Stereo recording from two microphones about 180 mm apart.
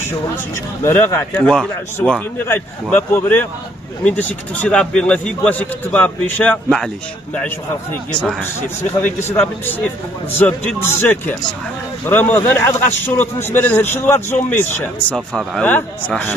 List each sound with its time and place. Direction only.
0.8 s a man's voice: 10° left (ahead or behind)
8.1 s a man's voice: 5° left (ahead or behind)